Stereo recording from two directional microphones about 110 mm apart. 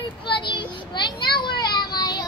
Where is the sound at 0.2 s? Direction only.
45° left (ahead or behind).